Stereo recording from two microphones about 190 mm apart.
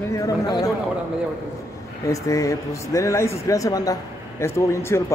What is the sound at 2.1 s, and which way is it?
A man's voice, 15° left (ahead or behind).